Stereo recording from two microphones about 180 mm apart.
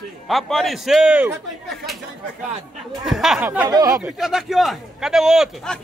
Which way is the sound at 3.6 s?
20° right (ahead or behind).